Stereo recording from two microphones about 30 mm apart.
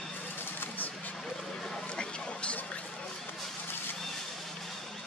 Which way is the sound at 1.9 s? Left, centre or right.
Left.